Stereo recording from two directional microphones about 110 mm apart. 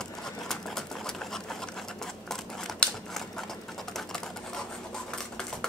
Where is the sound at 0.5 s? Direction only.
5° left (ahead or behind).